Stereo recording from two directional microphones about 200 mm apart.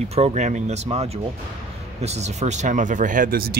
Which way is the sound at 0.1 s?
35° right (ahead or behind).